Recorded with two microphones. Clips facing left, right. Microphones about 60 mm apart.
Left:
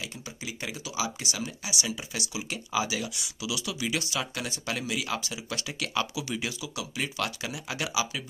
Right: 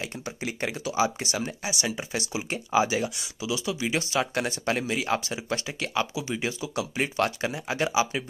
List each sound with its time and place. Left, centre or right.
0.0 s speech: right
6.6 s speech: right